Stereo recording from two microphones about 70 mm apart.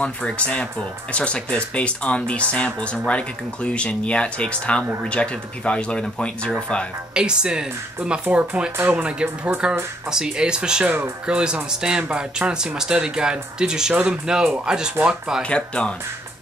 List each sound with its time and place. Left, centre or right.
0.0 s speech: centre
7.2 s speech: centre
8.7 s speech: right
9.0 s speech: centre
15.4 s speech: centre